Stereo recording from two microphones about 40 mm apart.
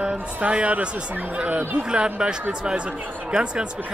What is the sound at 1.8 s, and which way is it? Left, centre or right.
Speech, right.